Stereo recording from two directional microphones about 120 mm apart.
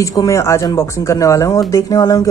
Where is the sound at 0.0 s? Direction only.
30° left (ahead or behind).